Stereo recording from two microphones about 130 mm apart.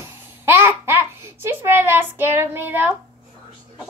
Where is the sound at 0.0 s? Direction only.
15° right (ahead or behind).